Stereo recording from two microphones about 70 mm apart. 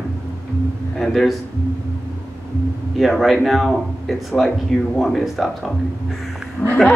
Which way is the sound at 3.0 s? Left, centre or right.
Centre.